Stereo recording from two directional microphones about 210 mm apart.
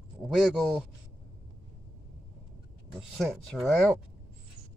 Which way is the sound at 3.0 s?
Centre (ahead or behind).